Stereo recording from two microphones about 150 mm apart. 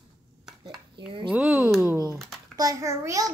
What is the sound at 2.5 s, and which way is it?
Speech, 25° right (ahead or behind).